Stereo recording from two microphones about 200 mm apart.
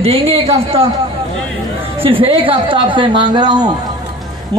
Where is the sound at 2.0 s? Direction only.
25° right (ahead or behind).